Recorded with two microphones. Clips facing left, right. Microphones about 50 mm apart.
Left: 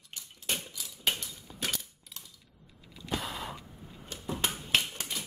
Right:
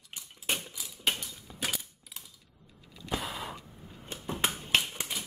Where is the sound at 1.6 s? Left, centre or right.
Centre.